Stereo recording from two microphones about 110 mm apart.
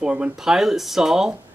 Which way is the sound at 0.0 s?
10° right (ahead or behind).